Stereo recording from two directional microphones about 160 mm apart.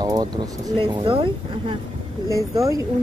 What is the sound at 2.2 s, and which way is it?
Speech, 20° right (ahead or behind).